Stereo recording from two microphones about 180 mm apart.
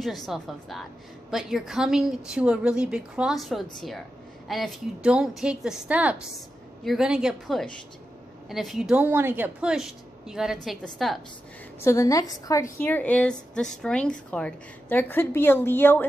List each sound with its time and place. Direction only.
0.3 s a woman's voice: centre (ahead or behind)
11.8 s a woman's voice: 15° left (ahead or behind)